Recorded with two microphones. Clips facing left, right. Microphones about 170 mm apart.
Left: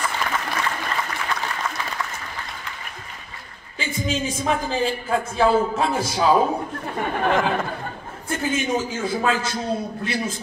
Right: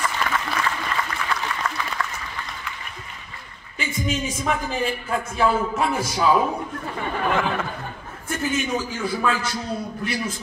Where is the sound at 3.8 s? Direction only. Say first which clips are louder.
Left 1 dB; 30° left (ahead or behind).